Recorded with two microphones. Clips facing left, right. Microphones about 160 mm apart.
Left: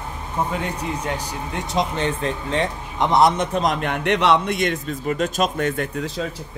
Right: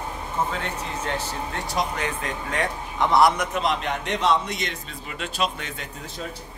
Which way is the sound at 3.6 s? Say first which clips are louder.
Left 4 dB; 50° left (ahead or behind).